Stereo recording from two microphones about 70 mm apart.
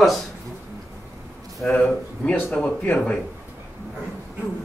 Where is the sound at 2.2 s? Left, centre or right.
Centre.